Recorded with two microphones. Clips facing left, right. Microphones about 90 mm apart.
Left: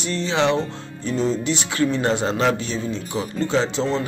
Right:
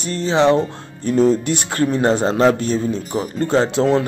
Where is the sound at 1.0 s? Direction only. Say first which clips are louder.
Right 7 dB; 55° right (ahead or behind).